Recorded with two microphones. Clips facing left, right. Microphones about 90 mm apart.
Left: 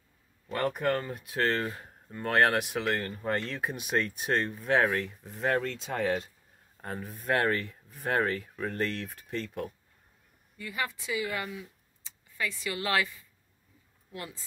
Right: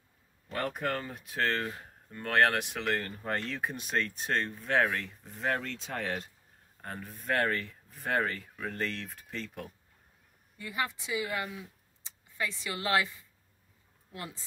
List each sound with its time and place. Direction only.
0.5 s speech: centre (ahead or behind)
10.6 s a woman's voice: 25° right (ahead or behind)
14.1 s a woman's voice: 25° right (ahead or behind)